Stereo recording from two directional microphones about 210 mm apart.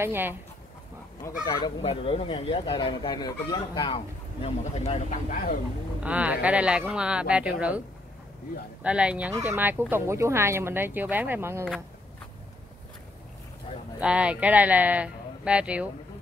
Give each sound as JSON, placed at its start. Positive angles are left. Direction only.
{"t": 0.0, "sound": "speech", "side_deg": -10}
{"t": 1.4, "sound": "speech", "side_deg": 25}
{"t": 6.0, "sound": "speech", "side_deg": -5}
{"t": 8.8, "sound": "speech", "side_deg": -5}
{"t": 13.9, "sound": "speech", "side_deg": -5}